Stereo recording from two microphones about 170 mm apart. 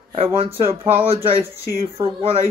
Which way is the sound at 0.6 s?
35° right (ahead or behind).